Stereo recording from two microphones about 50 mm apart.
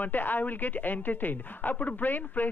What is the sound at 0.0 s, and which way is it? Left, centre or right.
Speech, left.